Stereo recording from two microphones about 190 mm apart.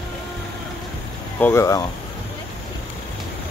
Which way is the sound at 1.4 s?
15° left (ahead or behind).